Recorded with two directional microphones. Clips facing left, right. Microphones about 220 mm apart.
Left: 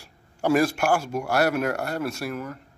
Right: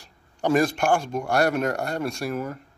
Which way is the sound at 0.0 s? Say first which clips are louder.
Even; 10° left (ahead or behind).